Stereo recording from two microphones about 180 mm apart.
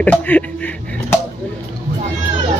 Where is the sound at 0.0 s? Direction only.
10° left (ahead or behind).